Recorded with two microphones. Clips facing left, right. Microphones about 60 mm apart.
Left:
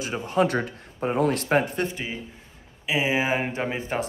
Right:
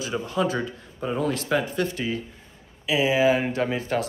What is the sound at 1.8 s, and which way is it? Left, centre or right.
Speech, left.